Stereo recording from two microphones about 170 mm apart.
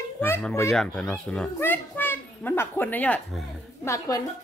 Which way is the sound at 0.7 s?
5° left (ahead or behind).